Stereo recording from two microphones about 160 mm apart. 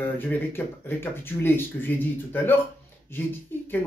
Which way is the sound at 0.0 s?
10° left (ahead or behind).